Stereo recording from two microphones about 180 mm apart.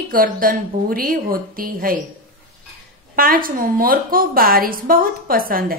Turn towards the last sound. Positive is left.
turn(degrees=-55)  # may be behind; listen again after turning